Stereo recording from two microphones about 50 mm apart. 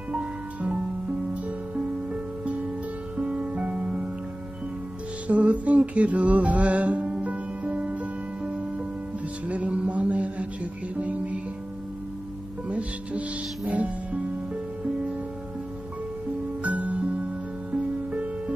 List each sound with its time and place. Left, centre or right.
0.1 s music: right
2.4 s music: right
5.3 s music: right
12.6 s music: right
16.6 s music: right